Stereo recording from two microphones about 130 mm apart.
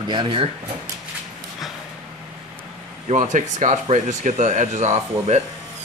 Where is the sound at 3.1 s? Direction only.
70° right (ahead or behind).